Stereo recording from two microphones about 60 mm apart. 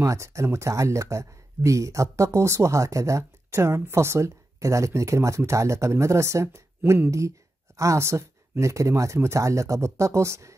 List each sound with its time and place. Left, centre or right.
0.0 s speech: right